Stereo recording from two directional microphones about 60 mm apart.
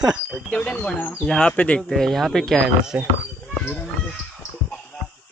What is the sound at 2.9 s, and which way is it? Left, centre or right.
Speech, centre.